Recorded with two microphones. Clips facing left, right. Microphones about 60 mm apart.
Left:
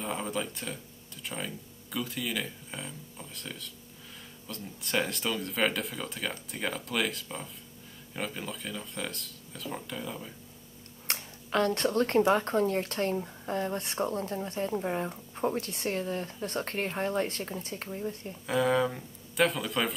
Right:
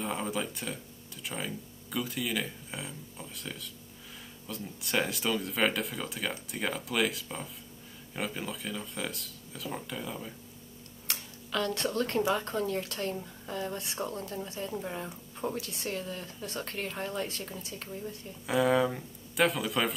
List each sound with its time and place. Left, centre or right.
0.0 s speech: centre
11.1 s speech: left
18.5 s speech: centre